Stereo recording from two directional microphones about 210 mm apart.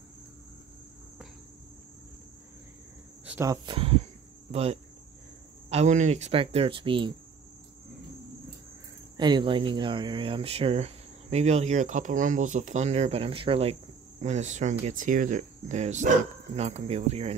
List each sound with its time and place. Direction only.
3.3 s speech: 15° right (ahead or behind)
9.1 s speech: 20° right (ahead or behind)